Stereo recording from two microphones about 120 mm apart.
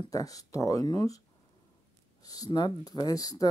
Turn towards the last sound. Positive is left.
turn(degrees=30)  # may be behind; listen again after turning